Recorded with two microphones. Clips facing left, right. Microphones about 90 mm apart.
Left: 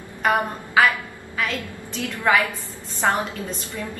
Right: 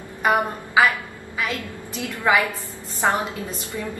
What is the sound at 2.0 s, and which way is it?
A woman's voice, 20° right (ahead or behind).